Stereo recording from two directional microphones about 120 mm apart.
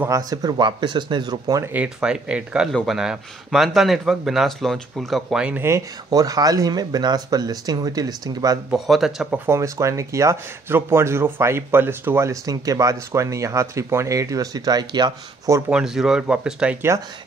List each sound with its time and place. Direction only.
0.0 s speech: 30° right (ahead or behind)
1.7 s speech: 10° right (ahead or behind)
5.6 s speech: 25° right (ahead or behind)
8.6 s speech: centre (ahead or behind)
9.5 s speech: 25° right (ahead or behind)
15.7 s speech: 5° right (ahead or behind)